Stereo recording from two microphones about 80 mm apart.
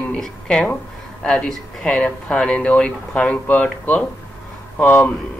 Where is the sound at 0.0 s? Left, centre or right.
Centre.